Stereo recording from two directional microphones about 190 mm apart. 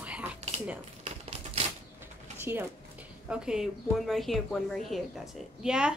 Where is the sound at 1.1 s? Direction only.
35° right (ahead or behind).